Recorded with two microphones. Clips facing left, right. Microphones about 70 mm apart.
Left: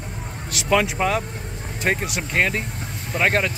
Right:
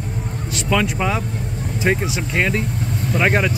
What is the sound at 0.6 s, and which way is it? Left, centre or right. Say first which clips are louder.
Speech: even; centre.